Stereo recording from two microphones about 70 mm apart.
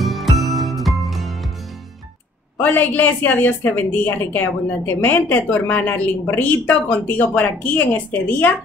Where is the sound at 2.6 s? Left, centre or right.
Left.